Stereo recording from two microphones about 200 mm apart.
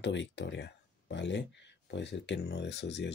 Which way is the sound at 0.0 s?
65° left (ahead or behind).